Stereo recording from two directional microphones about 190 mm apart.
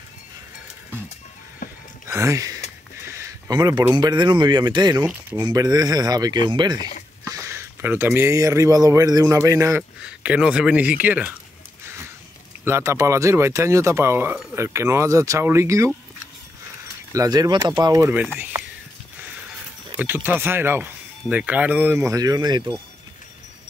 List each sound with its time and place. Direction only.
2.0 s speech: 15° right (ahead or behind)
12.6 s speech: 15° right (ahead or behind)
17.1 s speech: 20° right (ahead or behind)
20.0 s speech: 10° right (ahead or behind)